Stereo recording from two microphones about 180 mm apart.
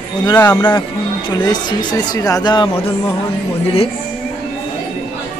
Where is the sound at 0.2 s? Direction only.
20° left (ahead or behind).